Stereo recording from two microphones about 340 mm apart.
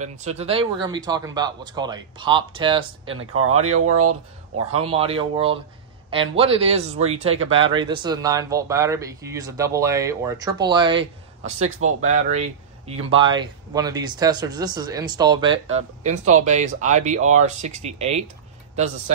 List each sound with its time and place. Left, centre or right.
0.0 s speech: centre
3.3 s speech: right
4.7 s speech: centre